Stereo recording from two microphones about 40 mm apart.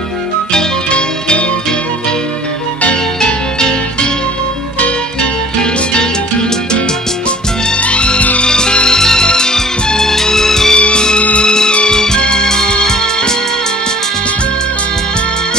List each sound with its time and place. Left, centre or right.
0.5 s music: left
3.2 s music: centre
4.7 s music: left
7.9 s music: left; by 10.8 s centre
10.8 s music: left